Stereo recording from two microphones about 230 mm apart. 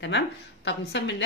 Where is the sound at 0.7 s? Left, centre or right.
Left.